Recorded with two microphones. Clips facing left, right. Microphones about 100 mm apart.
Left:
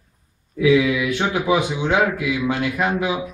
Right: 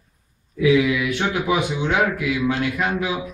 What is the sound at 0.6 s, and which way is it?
A man's voice, 25° left (ahead or behind).